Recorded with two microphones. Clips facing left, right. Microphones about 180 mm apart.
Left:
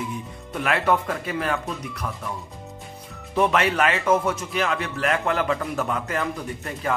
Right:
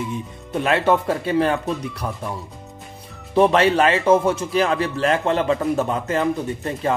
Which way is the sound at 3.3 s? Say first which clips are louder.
Right 5 dB; 30° right (ahead or behind).